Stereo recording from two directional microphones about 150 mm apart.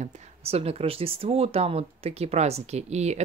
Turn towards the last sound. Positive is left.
turn(degrees=-50)  # may be behind; listen again after turning